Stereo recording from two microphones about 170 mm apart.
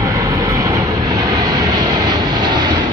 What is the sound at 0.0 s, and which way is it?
Vehicle, 20° right (ahead or behind).